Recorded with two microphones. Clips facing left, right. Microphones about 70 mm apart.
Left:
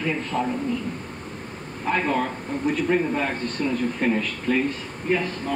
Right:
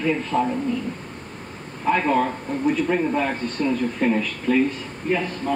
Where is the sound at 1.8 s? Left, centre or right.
Centre.